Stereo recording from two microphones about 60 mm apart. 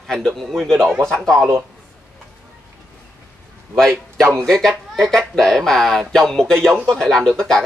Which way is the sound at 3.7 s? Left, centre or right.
Centre.